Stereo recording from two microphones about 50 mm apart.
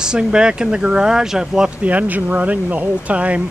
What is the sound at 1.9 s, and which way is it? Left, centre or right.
Speech, right.